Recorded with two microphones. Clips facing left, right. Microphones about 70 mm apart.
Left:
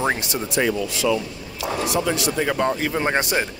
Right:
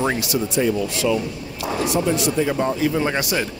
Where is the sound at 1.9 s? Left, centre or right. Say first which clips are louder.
Right 3 dB; left.